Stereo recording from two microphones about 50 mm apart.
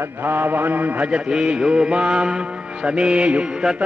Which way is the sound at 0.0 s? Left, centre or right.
Right.